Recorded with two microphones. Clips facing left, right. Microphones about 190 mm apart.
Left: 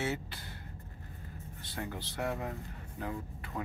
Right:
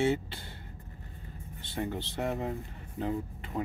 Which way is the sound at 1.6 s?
25° right (ahead or behind).